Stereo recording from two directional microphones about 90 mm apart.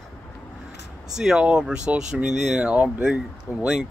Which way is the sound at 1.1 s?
5° right (ahead or behind).